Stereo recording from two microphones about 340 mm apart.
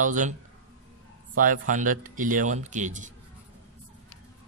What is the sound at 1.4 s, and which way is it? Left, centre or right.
Speech, right.